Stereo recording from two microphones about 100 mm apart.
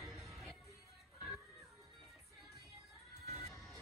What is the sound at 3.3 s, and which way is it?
Music, 30° left (ahead or behind).